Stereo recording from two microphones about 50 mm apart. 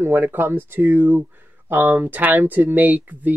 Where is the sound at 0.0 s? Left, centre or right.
Right.